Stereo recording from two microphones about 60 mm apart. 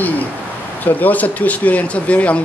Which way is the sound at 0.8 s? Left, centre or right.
Left.